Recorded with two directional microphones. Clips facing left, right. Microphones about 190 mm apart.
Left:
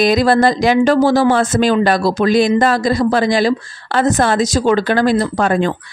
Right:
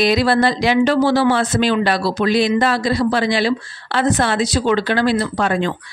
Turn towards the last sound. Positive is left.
turn(degrees=45)  # may be behind; listen again after turning